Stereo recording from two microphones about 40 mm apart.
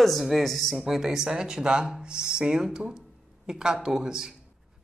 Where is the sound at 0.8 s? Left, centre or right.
Centre.